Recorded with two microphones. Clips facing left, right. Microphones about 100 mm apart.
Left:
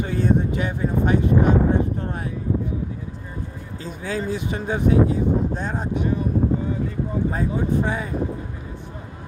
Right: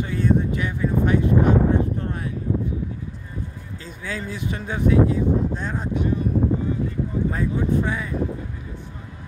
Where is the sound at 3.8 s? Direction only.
20° left (ahead or behind).